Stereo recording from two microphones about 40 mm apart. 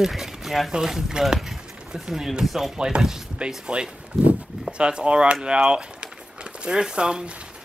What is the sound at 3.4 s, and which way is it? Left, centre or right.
Speech, right.